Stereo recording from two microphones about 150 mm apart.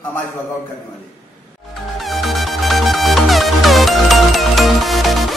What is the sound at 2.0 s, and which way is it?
Music, centre (ahead or behind).